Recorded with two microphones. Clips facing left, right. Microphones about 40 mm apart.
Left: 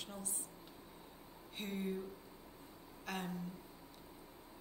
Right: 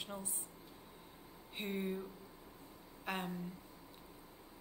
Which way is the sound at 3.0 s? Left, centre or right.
Centre.